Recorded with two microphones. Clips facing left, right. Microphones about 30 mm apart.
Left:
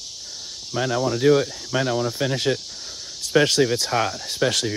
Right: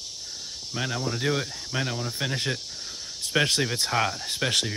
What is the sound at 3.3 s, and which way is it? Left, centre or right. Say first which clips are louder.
Speech: left 6 dB; centre.